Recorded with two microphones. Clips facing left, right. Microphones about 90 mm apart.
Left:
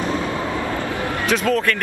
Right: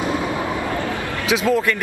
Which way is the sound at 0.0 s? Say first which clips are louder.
Right 1 dB; 15° right (ahead or behind).